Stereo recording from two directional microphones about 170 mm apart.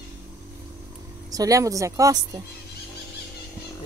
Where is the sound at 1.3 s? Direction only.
20° right (ahead or behind).